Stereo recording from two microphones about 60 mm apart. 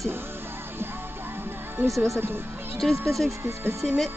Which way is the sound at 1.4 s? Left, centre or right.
Right.